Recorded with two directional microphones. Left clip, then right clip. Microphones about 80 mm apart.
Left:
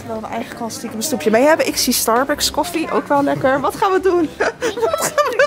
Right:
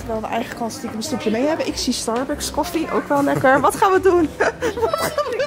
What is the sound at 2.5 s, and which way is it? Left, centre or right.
Speech, centre.